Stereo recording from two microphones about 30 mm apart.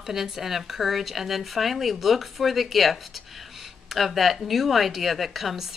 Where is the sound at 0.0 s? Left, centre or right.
Centre.